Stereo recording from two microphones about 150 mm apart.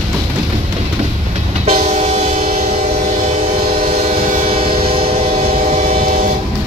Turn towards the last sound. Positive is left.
turn(degrees=-40)  # may be behind; listen again after turning